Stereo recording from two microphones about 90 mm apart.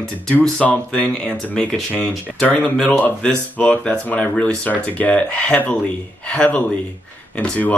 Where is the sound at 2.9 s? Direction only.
20° left (ahead or behind).